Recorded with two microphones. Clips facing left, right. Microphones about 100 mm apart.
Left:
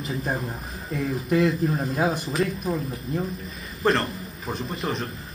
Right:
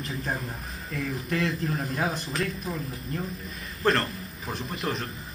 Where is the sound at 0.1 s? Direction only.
30° left (ahead or behind).